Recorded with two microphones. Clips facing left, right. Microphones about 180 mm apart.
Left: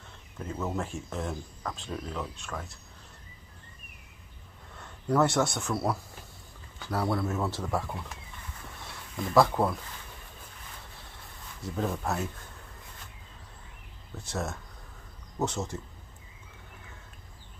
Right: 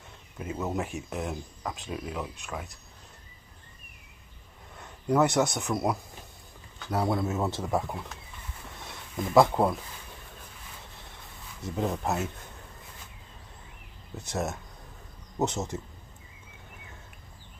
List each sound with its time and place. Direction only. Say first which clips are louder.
0.6 s speech: right 1 dB; 15° right (ahead or behind)
4.7 s speech: right 1 dB; 15° right (ahead or behind)
9.1 s speech: right 2 dB; 20° right (ahead or behind)
11.6 s speech: right 2 dB; 20° right (ahead or behind)
14.2 s speech: right 3 dB; 20° right (ahead or behind)